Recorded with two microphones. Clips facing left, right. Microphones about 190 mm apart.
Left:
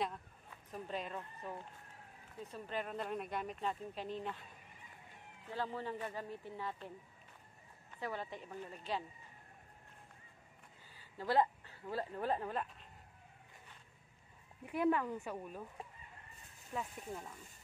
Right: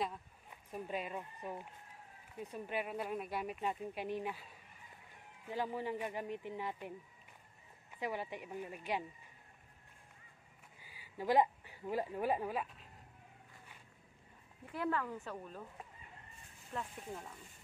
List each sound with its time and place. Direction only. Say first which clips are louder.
0.5 s speech: right 2 dB; 10° right (ahead or behind)
5.5 s speech: right 2 dB; 15° right (ahead or behind)
8.0 s speech: right 2 dB; 15° right (ahead or behind)
10.8 s a woman's voice: right 3 dB; 10° right (ahead or behind)
14.7 s speech: left 4 dB; 15° left (ahead or behind)
16.7 s speech: left 1 dB; centre (ahead or behind)